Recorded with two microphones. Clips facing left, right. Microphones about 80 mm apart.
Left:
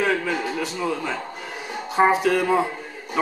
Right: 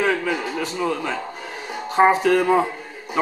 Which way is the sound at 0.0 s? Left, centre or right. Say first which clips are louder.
Right 1 dB; centre.